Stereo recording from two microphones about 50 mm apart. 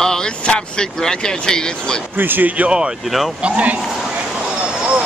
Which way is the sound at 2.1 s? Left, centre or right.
Right.